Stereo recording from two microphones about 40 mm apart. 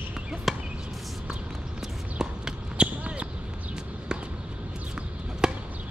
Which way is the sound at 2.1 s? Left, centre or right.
Centre.